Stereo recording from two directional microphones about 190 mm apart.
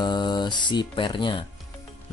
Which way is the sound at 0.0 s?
25° left (ahead or behind).